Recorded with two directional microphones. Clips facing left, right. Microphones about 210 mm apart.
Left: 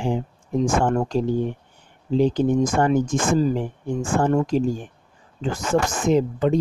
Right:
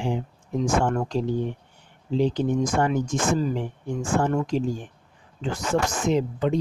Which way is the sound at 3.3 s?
35° left (ahead or behind).